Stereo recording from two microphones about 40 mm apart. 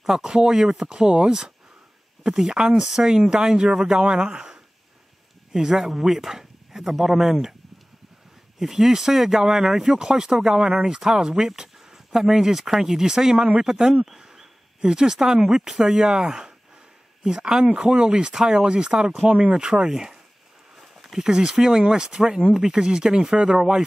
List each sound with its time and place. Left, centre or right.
0.0 s speech: centre
0.9 s speech: right
2.2 s speech: centre
8.5 s speech: centre
9.9 s speech: centre
19.9 s speech: centre
23.3 s speech: right